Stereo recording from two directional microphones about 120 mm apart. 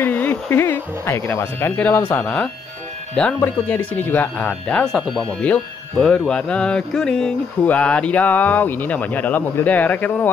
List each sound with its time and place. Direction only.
0.0 s speech: 15° left (ahead or behind)